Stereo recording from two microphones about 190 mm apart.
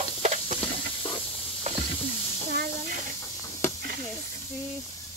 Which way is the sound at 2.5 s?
50° right (ahead or behind).